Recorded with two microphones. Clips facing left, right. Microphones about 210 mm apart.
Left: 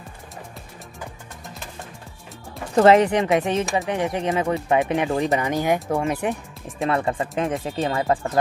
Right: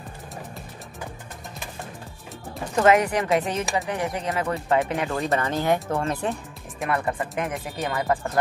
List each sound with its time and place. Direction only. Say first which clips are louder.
2.8 s speech: left 4 dB; 30° left (ahead or behind)
6.9 s speech: left 2 dB; 25° left (ahead or behind)